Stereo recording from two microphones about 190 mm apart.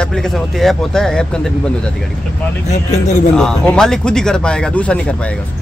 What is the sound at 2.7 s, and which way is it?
Speech, 35° left (ahead or behind).